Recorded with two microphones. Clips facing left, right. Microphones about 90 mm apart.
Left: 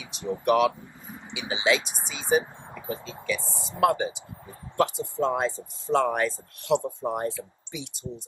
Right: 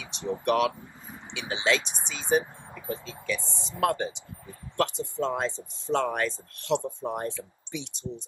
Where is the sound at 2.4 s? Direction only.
20° left (ahead or behind).